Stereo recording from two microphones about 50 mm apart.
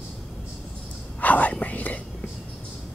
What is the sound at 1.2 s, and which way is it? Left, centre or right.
Whispering, left.